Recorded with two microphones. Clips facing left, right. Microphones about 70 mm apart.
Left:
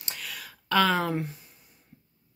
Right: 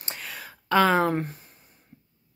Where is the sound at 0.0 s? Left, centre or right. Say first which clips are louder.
Right 2 dB; right.